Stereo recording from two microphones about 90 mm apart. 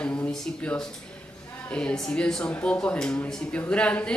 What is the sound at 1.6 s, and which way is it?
Speech, 10° left (ahead or behind).